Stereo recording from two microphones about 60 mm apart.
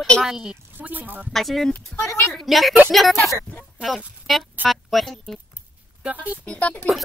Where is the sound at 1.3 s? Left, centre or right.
Centre.